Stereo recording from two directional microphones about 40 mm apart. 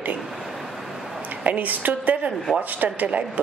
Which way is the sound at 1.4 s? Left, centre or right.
Right.